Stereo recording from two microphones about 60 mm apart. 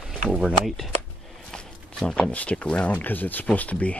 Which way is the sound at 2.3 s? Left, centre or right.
Left.